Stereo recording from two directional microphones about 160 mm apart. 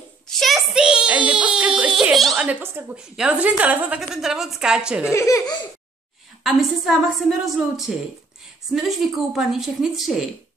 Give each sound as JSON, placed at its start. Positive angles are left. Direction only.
{"t": 0.3, "sound": "a sound", "side_deg": 0}
{"t": 3.0, "sound": "a woman's voice", "side_deg": -5}
{"t": 5.1, "sound": "speech", "side_deg": 20}
{"t": 6.4, "sound": "a woman's voice", "side_deg": 0}